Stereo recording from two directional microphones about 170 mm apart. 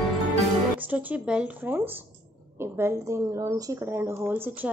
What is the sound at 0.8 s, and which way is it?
A woman's voice, 10° right (ahead or behind).